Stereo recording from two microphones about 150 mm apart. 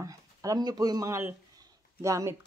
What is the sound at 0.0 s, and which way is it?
Speech, 25° right (ahead or behind).